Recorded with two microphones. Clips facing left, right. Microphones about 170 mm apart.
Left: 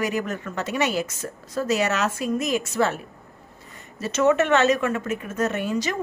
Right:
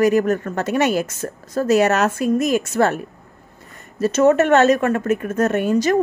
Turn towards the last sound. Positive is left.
turn(degrees=-50)  # may be behind; listen again after turning